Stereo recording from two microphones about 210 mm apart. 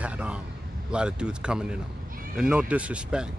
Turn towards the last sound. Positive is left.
turn(degrees=-5)  # may be behind; listen again after turning